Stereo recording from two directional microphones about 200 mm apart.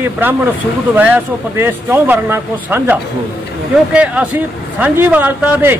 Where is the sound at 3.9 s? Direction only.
5° right (ahead or behind).